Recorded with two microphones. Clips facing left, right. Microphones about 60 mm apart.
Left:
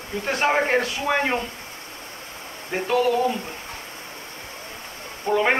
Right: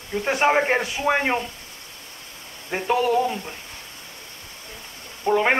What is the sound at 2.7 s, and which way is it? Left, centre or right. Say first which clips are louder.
Speech: left 1 dB; centre.